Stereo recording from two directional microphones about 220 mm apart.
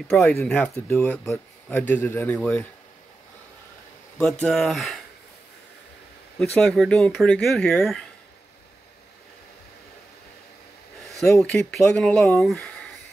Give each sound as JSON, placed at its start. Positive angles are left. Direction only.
{"t": 0.1, "sound": "speech", "side_deg": 0}
{"t": 4.2, "sound": "speech", "side_deg": 0}
{"t": 6.6, "sound": "speech", "side_deg": 5}
{"t": 11.1, "sound": "a sound", "side_deg": 0}
{"t": 11.3, "sound": "speech", "side_deg": 5}